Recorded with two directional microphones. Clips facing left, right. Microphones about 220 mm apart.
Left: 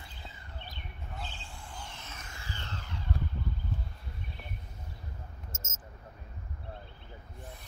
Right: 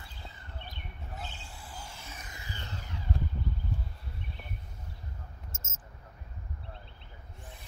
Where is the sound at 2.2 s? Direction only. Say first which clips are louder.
Left 1 dB; 20° right (ahead or behind).